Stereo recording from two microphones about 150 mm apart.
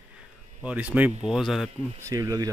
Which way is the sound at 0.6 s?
10° right (ahead or behind).